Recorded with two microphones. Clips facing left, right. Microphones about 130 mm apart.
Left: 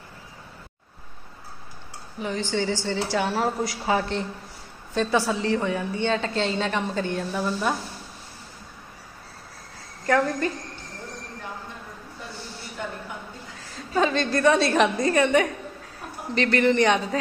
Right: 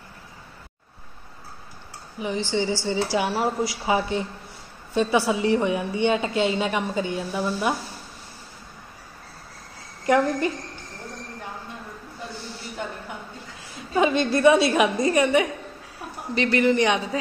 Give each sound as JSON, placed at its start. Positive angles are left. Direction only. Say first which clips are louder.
{"t": 2.1, "sound": "a woman's voice", "louder": "right 1 dB", "side_deg": -10}
{"t": 10.0, "sound": "a woman's voice", "louder": "right 2 dB", "side_deg": -15}
{"t": 13.9, "sound": "a woman's voice", "louder": "right 2 dB", "side_deg": -15}